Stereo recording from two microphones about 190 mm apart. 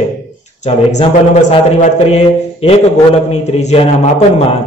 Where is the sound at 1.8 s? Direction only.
35° left (ahead or behind).